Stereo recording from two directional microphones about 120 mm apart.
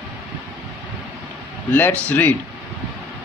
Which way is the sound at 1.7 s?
15° left (ahead or behind).